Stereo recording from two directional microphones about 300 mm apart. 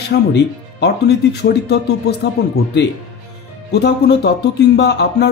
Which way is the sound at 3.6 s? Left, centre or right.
Left.